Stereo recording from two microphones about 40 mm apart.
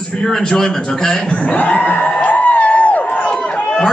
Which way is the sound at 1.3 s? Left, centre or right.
Left.